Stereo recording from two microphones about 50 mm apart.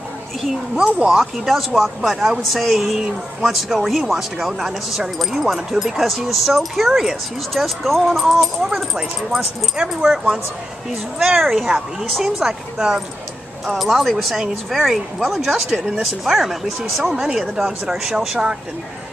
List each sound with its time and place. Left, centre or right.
0.7 s speech: centre
1.1 s a woman's voice: centre
13.7 s a woman's voice: centre